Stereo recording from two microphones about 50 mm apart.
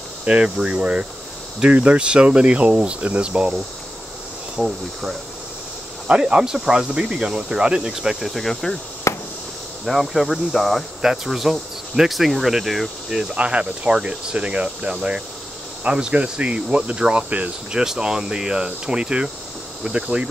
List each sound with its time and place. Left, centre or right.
0.2 s speech: right
4.6 s speech: centre
6.0 s speech: right
8.3 s speech: centre
9.1 s cricket: left
9.8 s speech: centre
13.3 s speech: right
17.1 s cricket: right
17.7 s speech: centre